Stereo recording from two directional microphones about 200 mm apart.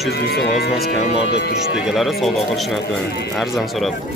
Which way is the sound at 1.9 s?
Centre (ahead or behind).